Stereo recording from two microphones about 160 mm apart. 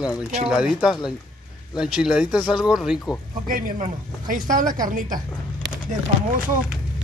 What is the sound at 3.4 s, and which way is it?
Speech, 60° right (ahead or behind).